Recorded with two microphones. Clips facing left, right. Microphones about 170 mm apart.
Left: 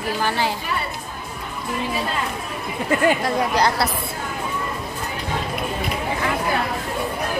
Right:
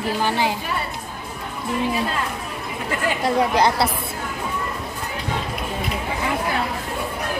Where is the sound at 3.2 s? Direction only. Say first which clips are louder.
Right 2 dB; 25° right (ahead or behind).